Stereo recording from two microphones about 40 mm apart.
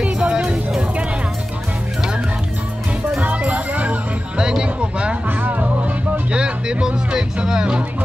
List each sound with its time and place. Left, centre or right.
0.0 s music: right
3.2 s music: right
4.4 s music: right
5.4 s music: right
6.3 s music: right